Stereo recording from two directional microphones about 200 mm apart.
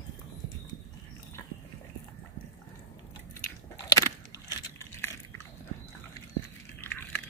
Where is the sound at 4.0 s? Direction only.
15° left (ahead or behind).